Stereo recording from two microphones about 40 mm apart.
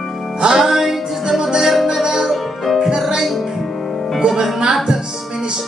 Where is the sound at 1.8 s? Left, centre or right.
Centre.